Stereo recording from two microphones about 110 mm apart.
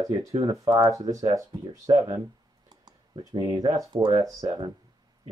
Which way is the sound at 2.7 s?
40° right (ahead or behind).